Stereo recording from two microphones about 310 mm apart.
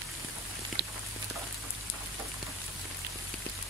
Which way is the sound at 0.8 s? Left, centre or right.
Right.